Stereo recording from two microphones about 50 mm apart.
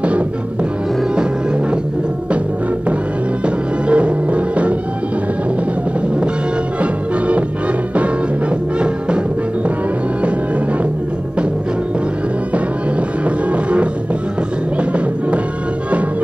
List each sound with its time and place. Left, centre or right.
3.4 s music: right
6.8 s music: right
8.7 s music: right
13.5 s music: right